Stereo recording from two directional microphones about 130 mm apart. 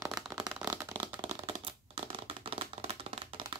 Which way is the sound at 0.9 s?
35° right (ahead or behind).